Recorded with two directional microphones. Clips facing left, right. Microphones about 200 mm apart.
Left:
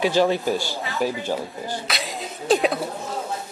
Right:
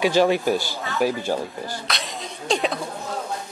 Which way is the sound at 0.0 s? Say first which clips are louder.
Right 1 dB; 15° right (ahead or behind).